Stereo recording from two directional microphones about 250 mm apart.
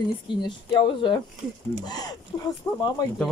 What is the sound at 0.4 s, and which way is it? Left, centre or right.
Speech, centre.